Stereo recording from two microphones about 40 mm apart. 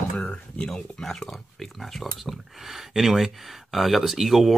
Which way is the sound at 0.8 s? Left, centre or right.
Centre.